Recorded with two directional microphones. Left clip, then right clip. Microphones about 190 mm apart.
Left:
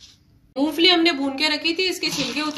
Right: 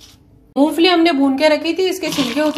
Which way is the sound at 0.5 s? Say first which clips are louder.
Right 4 dB; 45° right (ahead or behind).